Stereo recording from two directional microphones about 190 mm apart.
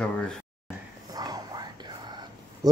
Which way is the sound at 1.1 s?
20° right (ahead or behind).